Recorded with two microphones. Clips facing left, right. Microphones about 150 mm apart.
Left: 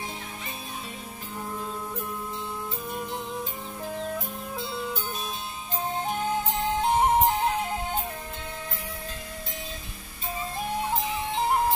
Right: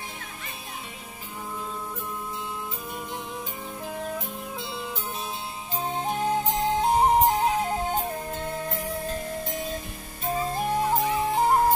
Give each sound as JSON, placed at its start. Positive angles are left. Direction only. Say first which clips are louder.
{"t": 6.1, "sound": "music", "louder": "right 5 dB", "side_deg": -35}
{"t": 10.2, "sound": "music", "louder": "right 6 dB", "side_deg": -45}